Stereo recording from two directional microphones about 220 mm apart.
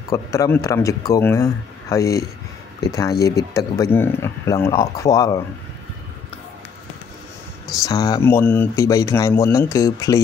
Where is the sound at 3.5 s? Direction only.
15° left (ahead or behind).